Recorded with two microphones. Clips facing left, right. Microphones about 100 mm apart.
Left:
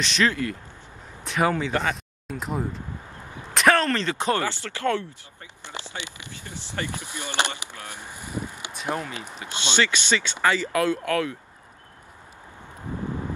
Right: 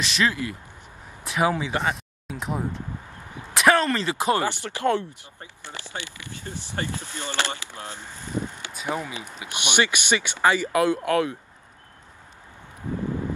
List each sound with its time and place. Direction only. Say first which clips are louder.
0.0 s a man's voice: left 1 dB; 5° right (ahead or behind)
5.7 s speech: even; 20° left (ahead or behind)
8.7 s speech: even; 5° right (ahead or behind)
9.1 s speech: even; 15° right (ahead or behind)